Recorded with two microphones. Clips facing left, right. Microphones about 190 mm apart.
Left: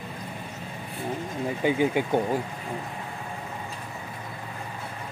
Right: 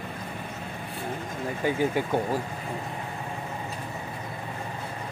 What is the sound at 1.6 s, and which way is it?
Speech, 15° left (ahead or behind).